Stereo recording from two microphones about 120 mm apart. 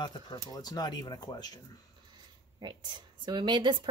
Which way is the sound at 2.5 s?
40° right (ahead or behind).